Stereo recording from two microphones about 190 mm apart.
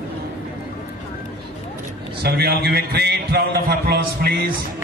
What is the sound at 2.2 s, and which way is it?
A man's voice, 55° right (ahead or behind).